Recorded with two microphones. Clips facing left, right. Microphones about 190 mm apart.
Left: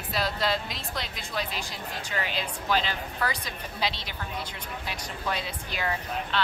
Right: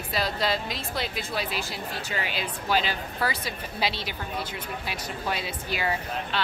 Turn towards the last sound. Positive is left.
turn(degrees=-10)  # may be behind; listen again after turning